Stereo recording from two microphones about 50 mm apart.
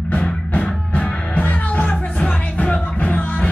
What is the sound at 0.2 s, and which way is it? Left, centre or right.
Music, left.